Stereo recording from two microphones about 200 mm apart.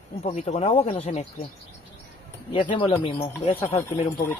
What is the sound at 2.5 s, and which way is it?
Speech, 25° left (ahead or behind).